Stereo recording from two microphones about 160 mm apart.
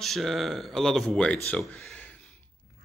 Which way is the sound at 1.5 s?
5° left (ahead or behind).